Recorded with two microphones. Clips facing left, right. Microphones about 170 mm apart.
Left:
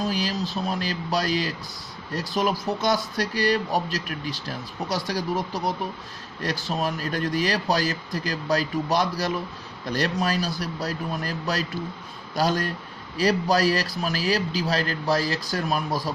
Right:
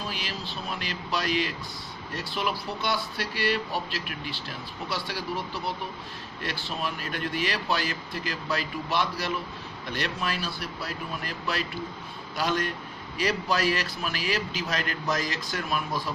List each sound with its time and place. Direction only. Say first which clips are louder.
0.0 s speech: left 9 dB; 40° left (ahead or behind)